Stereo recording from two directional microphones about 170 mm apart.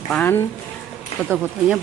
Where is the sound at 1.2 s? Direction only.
5° right (ahead or behind).